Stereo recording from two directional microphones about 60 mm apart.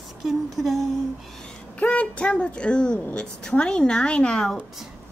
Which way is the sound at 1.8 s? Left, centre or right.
Centre.